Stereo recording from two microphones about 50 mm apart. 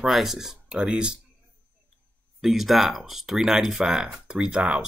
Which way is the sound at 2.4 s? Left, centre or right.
Centre.